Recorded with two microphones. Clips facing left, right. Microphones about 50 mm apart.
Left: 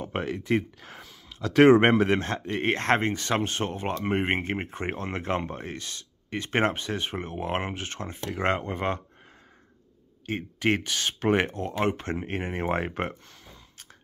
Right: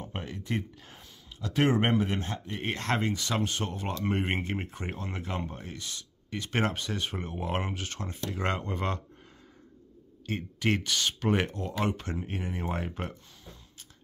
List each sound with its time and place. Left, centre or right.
0.0 s speech: left
10.2 s speech: left